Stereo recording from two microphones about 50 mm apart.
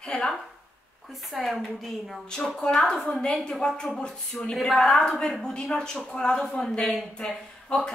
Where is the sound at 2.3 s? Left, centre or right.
Centre.